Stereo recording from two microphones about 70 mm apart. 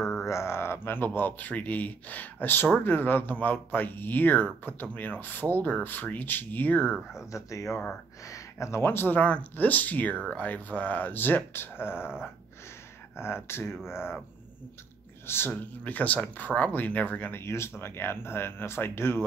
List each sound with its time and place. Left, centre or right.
0.2 s speech: left
7.2 s speech: left
13.1 s speech: left
15.2 s speech: left